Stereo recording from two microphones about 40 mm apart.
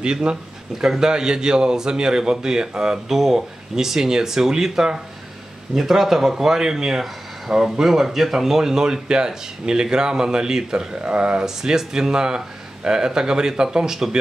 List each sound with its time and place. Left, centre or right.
0.0 s speech: right
0.7 s a man's voice: centre; by 11.4 s right
11.4 s a man's voice: centre